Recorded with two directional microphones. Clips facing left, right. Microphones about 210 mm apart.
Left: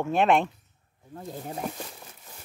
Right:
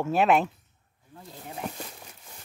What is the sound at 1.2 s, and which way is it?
Speech, 40° left (ahead or behind).